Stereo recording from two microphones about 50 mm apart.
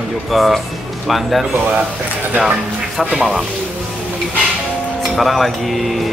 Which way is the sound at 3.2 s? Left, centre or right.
Centre.